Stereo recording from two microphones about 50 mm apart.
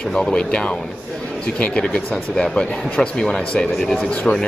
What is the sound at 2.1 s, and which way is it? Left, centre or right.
Speech, centre.